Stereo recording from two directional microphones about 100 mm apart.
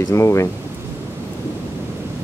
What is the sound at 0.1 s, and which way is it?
Speech, 30° left (ahead or behind).